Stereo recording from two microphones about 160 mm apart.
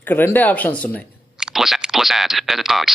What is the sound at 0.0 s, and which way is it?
Speech, 10° left (ahead or behind).